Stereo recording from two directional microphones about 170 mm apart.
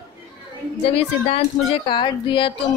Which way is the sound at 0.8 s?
35° left (ahead or behind).